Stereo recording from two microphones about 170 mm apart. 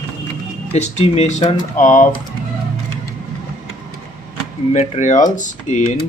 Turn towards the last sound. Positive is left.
turn(degrees=45)  # may be behind; listen again after turning